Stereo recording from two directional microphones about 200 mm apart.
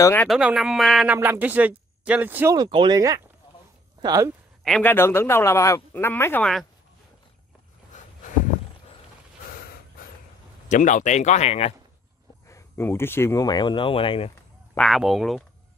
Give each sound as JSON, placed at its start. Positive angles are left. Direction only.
{"t": 0.0, "sound": "speech", "side_deg": 10}
{"t": 0.3, "sound": "speech", "side_deg": -5}
{"t": 2.5, "sound": "speech", "side_deg": -25}
{"t": 4.6, "sound": "speech", "side_deg": 5}
{"t": 7.9, "sound": "a sound", "side_deg": 35}
{"t": 10.7, "sound": "speech", "side_deg": 40}
{"t": 12.4, "sound": "speech", "side_deg": 15}
{"t": 14.7, "sound": "speech", "side_deg": 0}